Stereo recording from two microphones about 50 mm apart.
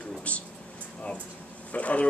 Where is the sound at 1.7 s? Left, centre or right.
Left.